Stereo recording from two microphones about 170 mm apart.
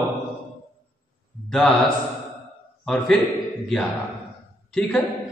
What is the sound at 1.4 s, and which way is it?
Speech, 5° left (ahead or behind).